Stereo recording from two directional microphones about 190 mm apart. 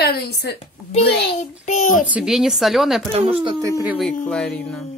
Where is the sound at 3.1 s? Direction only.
30° right (ahead or behind).